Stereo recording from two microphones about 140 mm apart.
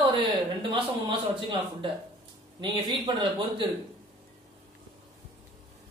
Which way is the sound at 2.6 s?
35° right (ahead or behind).